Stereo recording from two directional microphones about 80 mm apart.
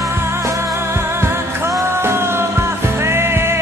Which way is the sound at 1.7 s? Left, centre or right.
Right.